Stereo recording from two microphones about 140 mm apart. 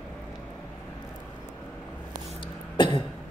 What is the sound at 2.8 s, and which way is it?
Cough, 35° left (ahead or behind).